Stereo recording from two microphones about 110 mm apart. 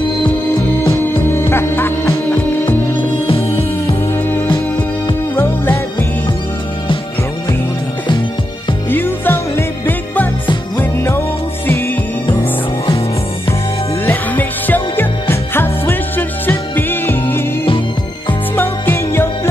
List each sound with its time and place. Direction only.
0.8 s music: 20° left (ahead or behind)
5.3 s music: 20° left (ahead or behind)
8.9 s music: 20° left (ahead or behind)
14.0 s music: 15° left (ahead or behind)
18.6 s music: 20° left (ahead or behind)